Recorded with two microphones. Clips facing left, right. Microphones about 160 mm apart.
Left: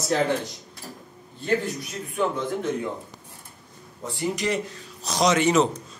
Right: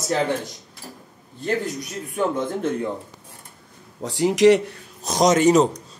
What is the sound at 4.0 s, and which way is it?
A man's voice, 90° right.